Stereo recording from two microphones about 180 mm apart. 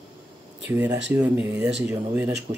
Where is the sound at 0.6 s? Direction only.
10° right (ahead or behind).